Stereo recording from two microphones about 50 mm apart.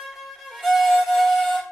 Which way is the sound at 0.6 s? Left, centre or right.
Centre.